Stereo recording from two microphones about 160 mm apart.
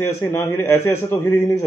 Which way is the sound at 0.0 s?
15° left (ahead or behind).